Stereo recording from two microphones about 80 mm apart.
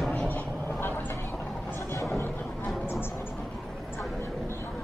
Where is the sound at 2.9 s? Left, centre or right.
Left.